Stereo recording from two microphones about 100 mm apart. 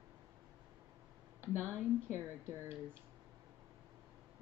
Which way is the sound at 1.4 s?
25° right (ahead or behind).